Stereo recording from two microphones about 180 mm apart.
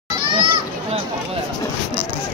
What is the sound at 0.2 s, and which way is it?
Children playing, 30° right (ahead or behind).